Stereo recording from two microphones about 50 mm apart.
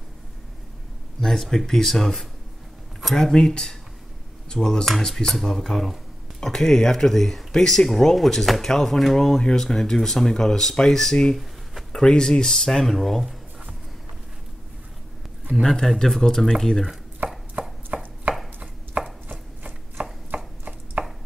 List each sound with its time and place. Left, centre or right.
1.2 s speech: centre
9.4 s speech: centre
15.6 s speech: centre
17.2 s chopping: right
21.0 s a sound: right